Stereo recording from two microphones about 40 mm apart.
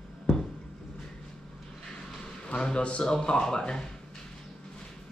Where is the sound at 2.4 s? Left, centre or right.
Left.